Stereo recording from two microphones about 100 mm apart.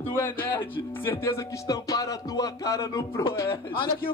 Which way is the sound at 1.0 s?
30° left (ahead or behind).